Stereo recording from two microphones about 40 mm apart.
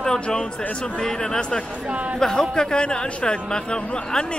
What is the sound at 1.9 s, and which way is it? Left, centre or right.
Speech, right.